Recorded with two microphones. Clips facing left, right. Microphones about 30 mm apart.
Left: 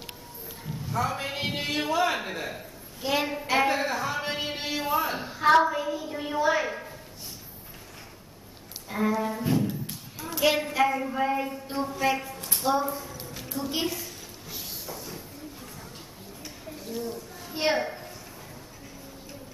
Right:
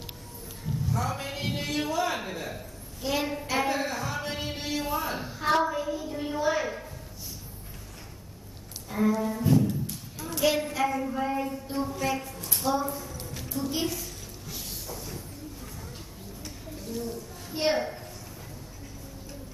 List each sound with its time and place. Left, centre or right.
0.8 s a man's voice: left
8.9 s a woman's voice: centre
12.6 s a sound: centre
13.7 s a woman's voice: centre
14.5 s train: centre
16.8 s a child's voice: centre